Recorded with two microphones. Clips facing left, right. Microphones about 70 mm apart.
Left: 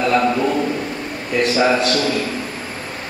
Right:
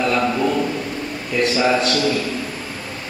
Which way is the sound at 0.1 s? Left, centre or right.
Left.